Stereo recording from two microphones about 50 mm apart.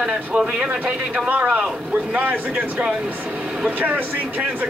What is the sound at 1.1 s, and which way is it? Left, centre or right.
Speech, right.